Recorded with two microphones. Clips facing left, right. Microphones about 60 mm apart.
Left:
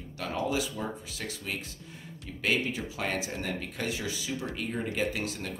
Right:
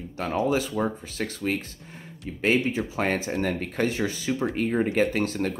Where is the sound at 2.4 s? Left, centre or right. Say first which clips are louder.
Right 6 dB; right.